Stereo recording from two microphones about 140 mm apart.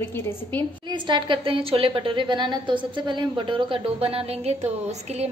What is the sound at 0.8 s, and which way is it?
A woman's voice, 35° right (ahead or behind).